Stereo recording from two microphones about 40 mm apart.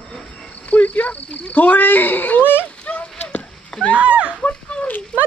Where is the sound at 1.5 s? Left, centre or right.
Left.